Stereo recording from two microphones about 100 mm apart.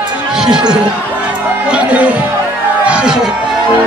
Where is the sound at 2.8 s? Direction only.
10° right (ahead or behind).